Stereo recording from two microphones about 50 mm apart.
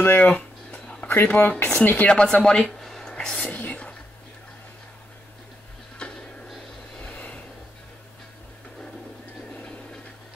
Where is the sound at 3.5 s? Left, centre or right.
Left.